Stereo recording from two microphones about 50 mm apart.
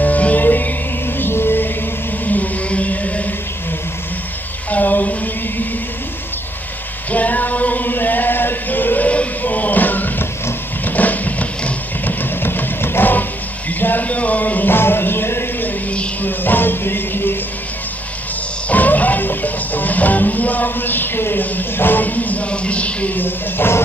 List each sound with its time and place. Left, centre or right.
0.0 s music: left
2.2 s music: left
4.6 s a sound: left
7.1 s a sound: left
10.9 s vehicle: left
13.7 s music: left
18.7 s music: left
23.1 s music: left